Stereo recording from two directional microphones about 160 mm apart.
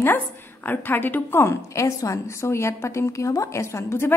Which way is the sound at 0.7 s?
10° left (ahead or behind).